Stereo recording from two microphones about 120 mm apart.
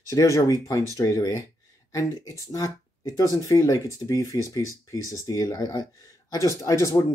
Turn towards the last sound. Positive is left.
turn(degrees=25)  # may be behind; listen again after turning